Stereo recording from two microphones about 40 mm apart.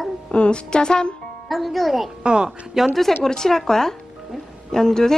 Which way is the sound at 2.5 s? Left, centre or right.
Centre.